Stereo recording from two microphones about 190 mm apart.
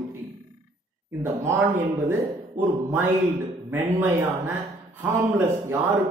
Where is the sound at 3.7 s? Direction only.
10° right (ahead or behind).